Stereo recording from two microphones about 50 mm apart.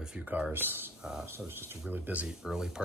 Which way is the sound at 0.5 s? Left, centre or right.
Right.